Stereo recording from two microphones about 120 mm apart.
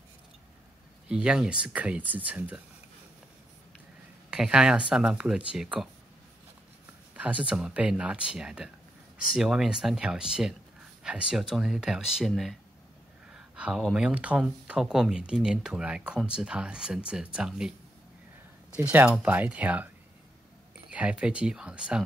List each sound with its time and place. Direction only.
1.0 s speech: 5° right (ahead or behind)
4.3 s speech: 5° right (ahead or behind)
7.2 s speech: 10° right (ahead or behind)
18.9 s speech: 10° right (ahead or behind)
20.9 s speech: 10° right (ahead or behind)